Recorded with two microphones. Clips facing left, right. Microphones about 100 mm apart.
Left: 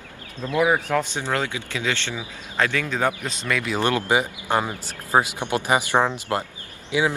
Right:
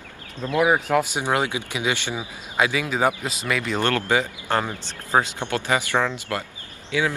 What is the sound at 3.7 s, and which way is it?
Speech, 15° left (ahead or behind).